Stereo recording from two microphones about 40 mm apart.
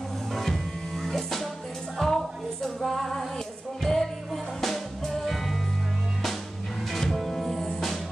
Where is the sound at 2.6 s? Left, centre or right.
Centre.